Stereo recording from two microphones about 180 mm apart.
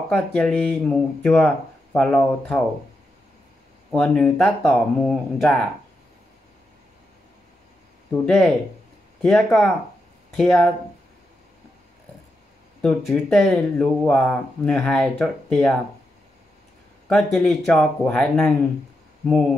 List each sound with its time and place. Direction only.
0.1 s speech: 5° left (ahead or behind)
3.9 s speech: 5° left (ahead or behind)
8.3 s speech: centre (ahead or behind)
12.8 s speech: centre (ahead or behind)
17.1 s speech: 5° left (ahead or behind)